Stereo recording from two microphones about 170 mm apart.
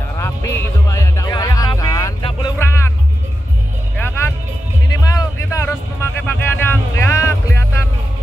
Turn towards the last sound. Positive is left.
turn(degrees=15)  # may be behind; listen again after turning